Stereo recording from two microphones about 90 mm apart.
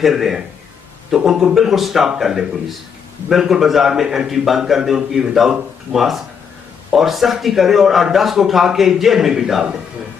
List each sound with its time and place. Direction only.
0.0 s a man's voice: 5° right (ahead or behind)